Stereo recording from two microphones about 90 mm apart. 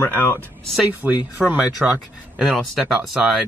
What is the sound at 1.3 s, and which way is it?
Speech, 15° right (ahead or behind).